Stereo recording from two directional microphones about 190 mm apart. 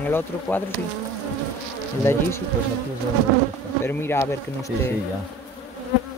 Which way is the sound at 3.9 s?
10° left (ahead or behind).